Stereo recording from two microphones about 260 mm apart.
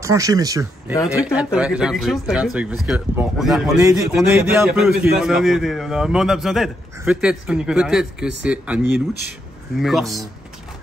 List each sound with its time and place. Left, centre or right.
0.0 s speech: centre
0.9 s speech: centre
1.2 s a man's voice: centre